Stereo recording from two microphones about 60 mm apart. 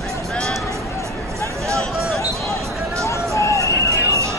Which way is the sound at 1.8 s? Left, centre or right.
Centre.